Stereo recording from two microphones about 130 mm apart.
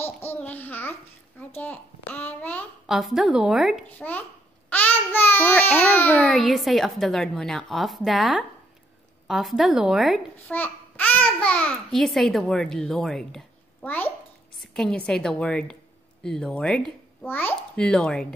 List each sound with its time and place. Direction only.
0.0 s babbling: 15° left (ahead or behind)
1.6 s a child's voice: 10° left (ahead or behind)
2.9 s a child's voice: centre (ahead or behind)
4.6 s a child's voice: 15° left (ahead or behind)
6.2 s a child's voice: centre (ahead or behind)
10.5 s a child's voice: 15° left (ahead or behind)